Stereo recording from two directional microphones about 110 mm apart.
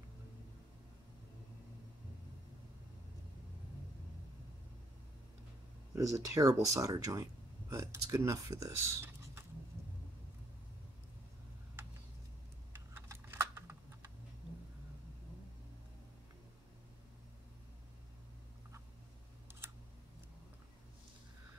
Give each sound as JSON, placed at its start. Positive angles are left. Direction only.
{"t": 5.9, "sound": "speech", "side_deg": -30}
{"t": 12.7, "sound": "computer keyboard", "side_deg": -20}